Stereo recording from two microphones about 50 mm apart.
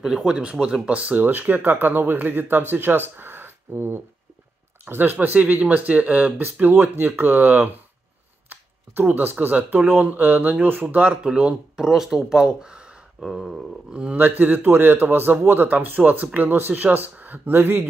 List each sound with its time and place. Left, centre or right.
0.0 s speech: centre; by 6.5 s right
6.6 s speech: right
9.1 s speech: right
11.2 s speech: right
11.7 s speech: centre
12.4 s speech: centre
13.2 s a sound: centre
14.1 s a man's voice: right